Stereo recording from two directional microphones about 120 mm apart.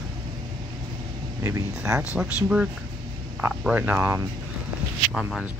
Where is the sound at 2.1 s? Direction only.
10° right (ahead or behind).